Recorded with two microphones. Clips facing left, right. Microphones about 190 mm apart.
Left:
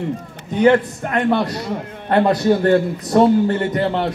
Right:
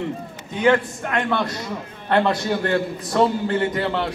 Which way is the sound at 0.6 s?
35° left (ahead or behind).